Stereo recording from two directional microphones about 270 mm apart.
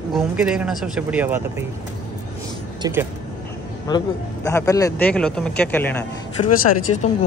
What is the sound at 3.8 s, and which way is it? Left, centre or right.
A man's voice, centre.